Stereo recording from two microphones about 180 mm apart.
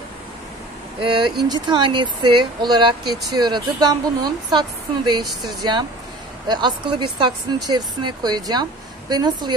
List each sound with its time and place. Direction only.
0.9 s speech: 25° right (ahead or behind)
5.2 s speech: centre (ahead or behind)
5.6 s speech: 25° right (ahead or behind)